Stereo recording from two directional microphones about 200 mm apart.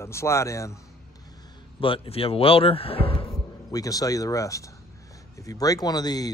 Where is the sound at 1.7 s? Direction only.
25° left (ahead or behind).